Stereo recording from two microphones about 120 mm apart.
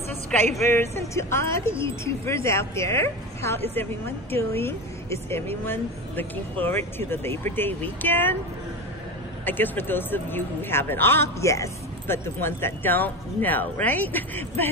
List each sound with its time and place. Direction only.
0.6 s speech: 20° left (ahead or behind)
9.4 s speech: 15° left (ahead or behind)